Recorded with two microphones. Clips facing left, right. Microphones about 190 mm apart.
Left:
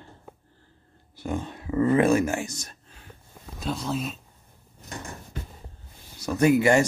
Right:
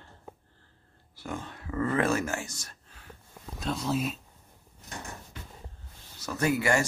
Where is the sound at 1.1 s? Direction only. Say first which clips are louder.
Left 7 dB; 15° left (ahead or behind).